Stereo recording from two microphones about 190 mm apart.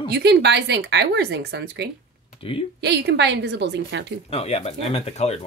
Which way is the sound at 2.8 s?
60° right (ahead or behind).